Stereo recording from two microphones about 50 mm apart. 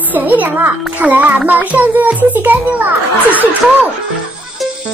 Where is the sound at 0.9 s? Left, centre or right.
Right.